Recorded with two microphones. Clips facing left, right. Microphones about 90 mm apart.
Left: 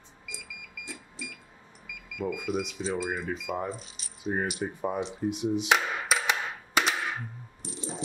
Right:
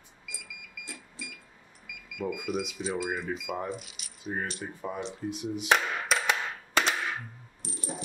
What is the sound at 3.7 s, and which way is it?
Rattle, 35° left (ahead or behind).